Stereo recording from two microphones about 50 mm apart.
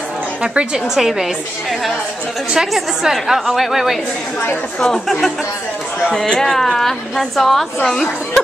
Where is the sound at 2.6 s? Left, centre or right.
Centre.